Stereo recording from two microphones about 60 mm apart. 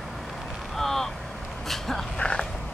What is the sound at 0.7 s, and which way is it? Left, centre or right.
Vehicle, centre.